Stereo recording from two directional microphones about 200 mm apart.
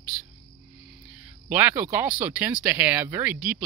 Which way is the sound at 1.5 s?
10° right (ahead or behind).